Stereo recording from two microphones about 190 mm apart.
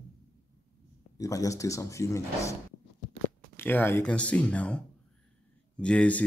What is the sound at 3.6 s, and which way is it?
Speech, 10° left (ahead or behind).